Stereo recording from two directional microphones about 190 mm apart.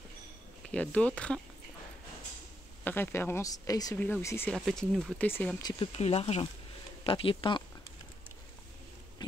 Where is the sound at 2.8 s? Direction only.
10° left (ahead or behind).